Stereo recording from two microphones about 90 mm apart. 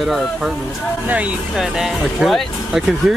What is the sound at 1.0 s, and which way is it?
Speech, 15° right (ahead or behind).